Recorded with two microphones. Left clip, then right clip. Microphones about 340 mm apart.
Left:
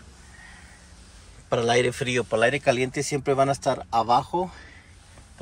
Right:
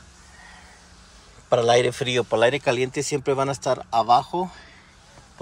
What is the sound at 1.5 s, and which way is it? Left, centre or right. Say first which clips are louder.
Speech: right 4 dB; centre.